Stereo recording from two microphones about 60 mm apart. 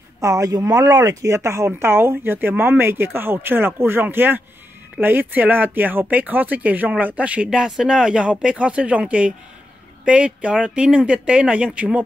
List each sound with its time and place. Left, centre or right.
0.2 s speech: right
1.7 s speech: right
7.4 s speech: centre